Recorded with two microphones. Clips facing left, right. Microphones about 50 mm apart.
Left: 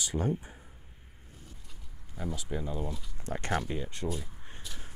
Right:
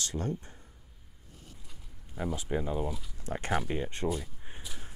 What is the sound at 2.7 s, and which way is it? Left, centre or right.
Speech, centre.